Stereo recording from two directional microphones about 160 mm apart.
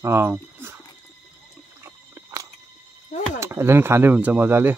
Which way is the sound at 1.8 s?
15° right (ahead or behind).